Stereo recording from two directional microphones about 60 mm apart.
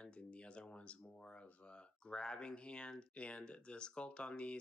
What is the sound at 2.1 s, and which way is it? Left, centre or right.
Speech, centre.